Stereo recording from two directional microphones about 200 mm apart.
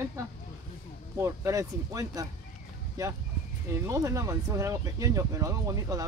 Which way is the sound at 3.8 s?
15° right (ahead or behind).